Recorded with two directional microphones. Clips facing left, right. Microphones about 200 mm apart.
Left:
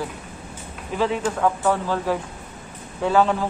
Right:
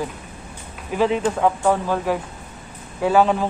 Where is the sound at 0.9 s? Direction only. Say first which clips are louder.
Right 3 dB; 15° right (ahead or behind).